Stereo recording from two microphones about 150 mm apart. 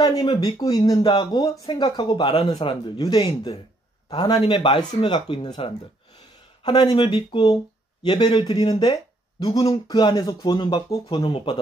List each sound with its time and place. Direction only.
0.0 s speech: 25° left (ahead or behind)